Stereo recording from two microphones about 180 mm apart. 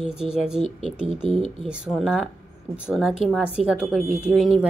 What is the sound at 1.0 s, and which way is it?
Speech, 30° right (ahead or behind).